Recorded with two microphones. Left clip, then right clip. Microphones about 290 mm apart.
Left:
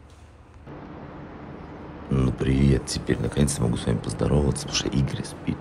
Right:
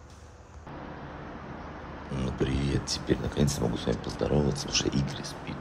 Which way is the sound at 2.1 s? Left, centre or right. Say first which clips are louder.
Left 6 dB; left.